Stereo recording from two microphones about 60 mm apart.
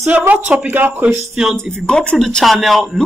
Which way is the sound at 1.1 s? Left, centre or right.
Centre.